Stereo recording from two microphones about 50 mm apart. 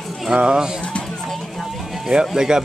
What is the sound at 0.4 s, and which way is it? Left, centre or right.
Speech, centre.